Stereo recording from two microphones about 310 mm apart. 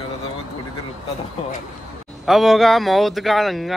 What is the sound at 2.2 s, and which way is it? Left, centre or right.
Speech, centre.